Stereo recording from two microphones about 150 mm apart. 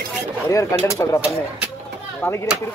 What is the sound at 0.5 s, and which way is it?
Speech, 20° left (ahead or behind).